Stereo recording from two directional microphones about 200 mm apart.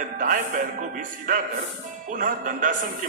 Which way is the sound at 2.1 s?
45° right (ahead or behind).